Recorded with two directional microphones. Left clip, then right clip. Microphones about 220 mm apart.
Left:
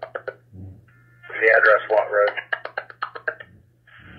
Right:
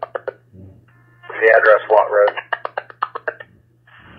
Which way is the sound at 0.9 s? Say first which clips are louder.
Right 3 dB; centre (ahead or behind).